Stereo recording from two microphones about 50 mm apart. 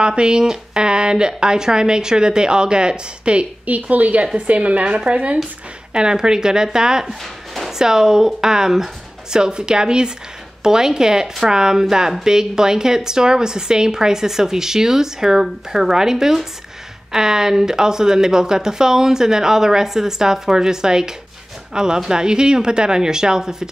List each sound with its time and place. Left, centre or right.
0.0 s speech: centre